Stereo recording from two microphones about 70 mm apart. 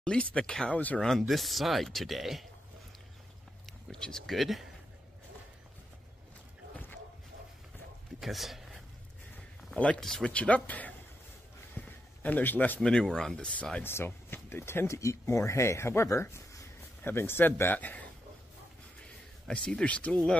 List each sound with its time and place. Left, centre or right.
0.0 s speech: centre
0.7 s speech: left
1.0 s speech: centre
3.9 s speech: centre
8.2 s a sound: centre
9.8 s speech: centre
10.0 s speech: centre
10.3 s speech: centre
11.7 s a sound: left
12.8 s speech: centre
13.8 s speech: left
18.9 s a sound: centre